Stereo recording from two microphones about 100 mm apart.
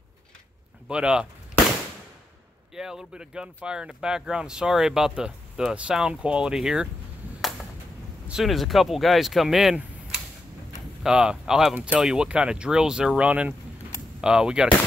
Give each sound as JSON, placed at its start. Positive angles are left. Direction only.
{"t": 0.8, "sound": "speech", "side_deg": -10}
{"t": 2.7, "sound": "speech", "side_deg": -5}
{"t": 8.3, "sound": "speech", "side_deg": 0}
{"t": 11.0, "sound": "speech", "side_deg": -5}